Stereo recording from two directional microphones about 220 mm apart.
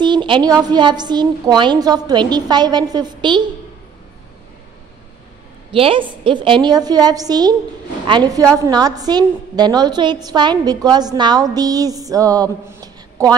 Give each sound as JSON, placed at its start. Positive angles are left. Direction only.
{"t": 0.0, "sound": "a sound", "side_deg": -20}
{"t": 0.6, "sound": "a woman's voice", "side_deg": -20}
{"t": 5.7, "sound": "a woman's voice", "side_deg": -25}